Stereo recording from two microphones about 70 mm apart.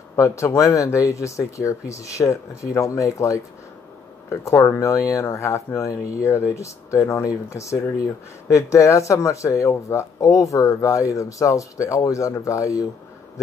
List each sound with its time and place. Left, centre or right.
0.1 s speech: left